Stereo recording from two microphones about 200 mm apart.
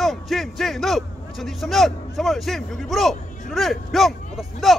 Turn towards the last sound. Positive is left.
turn(degrees=0)  # may be behind; listen again after turning